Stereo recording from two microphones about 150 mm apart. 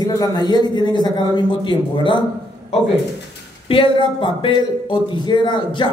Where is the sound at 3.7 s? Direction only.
35° left (ahead or behind).